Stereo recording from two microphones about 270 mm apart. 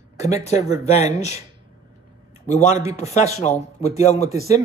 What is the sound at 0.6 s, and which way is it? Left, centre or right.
Speech, centre.